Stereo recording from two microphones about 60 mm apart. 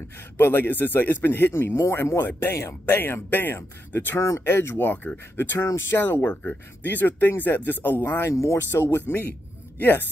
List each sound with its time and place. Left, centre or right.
0.4 s speech: left
4.2 s speech: left
5.6 s speech: left